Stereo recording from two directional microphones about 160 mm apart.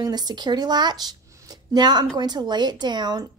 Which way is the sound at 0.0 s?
25° right (ahead or behind).